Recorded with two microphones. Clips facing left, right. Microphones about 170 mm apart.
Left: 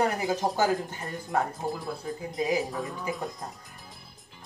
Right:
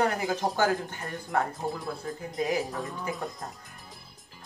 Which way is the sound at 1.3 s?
Centre (ahead or behind).